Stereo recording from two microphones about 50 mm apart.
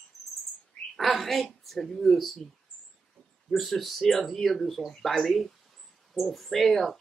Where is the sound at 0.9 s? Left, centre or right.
Centre.